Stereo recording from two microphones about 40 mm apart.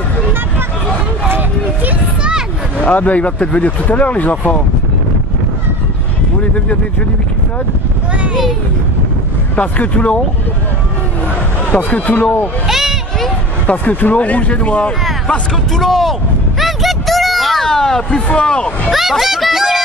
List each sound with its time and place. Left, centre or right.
2.8 s speech: left
9.6 s speech: left
11.7 s speech: left
12.6 s speech: centre
13.7 s speech: left
15.7 s a sound: centre
18.3 s speech: left
18.9 s music: centre